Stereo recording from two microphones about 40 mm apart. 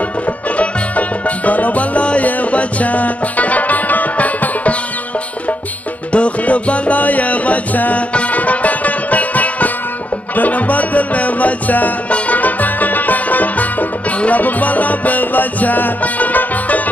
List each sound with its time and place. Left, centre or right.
0.6 s music: left
6.1 s music: left